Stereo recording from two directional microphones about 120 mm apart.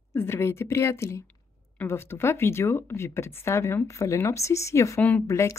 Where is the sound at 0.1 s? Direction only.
20° left (ahead or behind).